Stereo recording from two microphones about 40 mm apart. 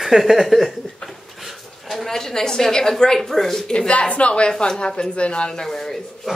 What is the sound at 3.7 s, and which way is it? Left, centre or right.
Speech, left.